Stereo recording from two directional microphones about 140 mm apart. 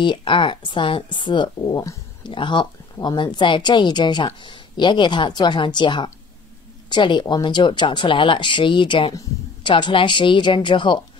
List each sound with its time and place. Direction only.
0.0 s speech: 35° left (ahead or behind)